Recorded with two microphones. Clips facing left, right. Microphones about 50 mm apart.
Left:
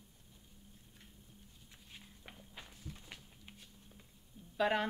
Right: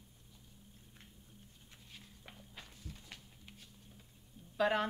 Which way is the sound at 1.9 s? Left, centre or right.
Centre.